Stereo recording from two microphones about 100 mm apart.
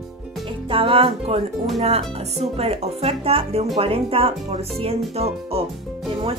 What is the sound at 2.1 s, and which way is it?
Speech, 90° right.